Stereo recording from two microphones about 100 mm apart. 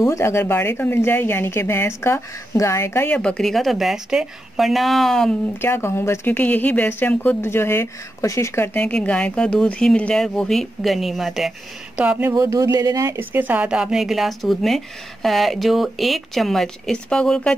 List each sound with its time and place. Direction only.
0.0 s speech: 25° left (ahead or behind)
3.1 s speech: 10° left (ahead or behind)
5.6 s speech: 25° left (ahead or behind)
8.7 s speech: 15° left (ahead or behind)
12.0 s speech: 15° right (ahead or behind)
12.3 s speech: 30° right (ahead or behind)
13.2 s speech: 20° right (ahead or behind); by 17.6 s 10° left (ahead or behind)